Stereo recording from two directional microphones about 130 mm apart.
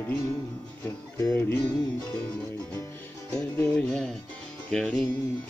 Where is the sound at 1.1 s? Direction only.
20° left (ahead or behind).